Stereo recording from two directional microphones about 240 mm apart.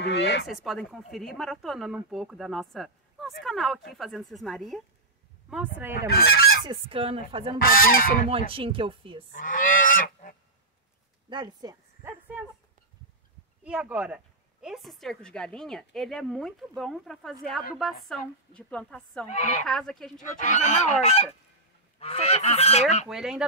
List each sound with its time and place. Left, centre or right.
0.0 s speech: left
0.5 s a woman's voice: centre
6.3 s goose: left
6.6 s speech: right
7.5 s goose: left
8.3 s speech: right
9.3 s goose: left
11.2 s speech: centre
13.7 s a woman's voice: centre
19.2 s goose: left
19.6 s a woman's voice: centre
20.2 s goose: left
23.0 s a woman's voice: centre